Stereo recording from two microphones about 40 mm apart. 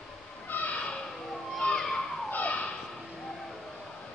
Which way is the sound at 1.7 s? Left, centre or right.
Centre.